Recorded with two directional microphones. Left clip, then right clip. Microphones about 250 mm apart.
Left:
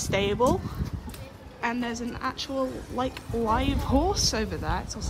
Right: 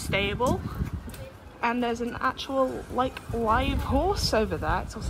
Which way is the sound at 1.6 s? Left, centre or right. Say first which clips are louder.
Right 3 dB; centre.